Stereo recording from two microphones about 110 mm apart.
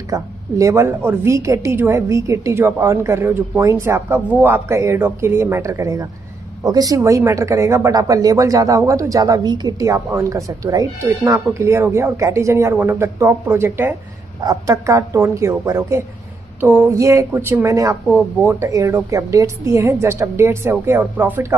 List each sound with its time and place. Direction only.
0.1 s speech: 30° right (ahead or behind)
14.4 s speech: 35° right (ahead or behind)
16.6 s a sound: 15° right (ahead or behind)
16.9 s speech: 30° right (ahead or behind)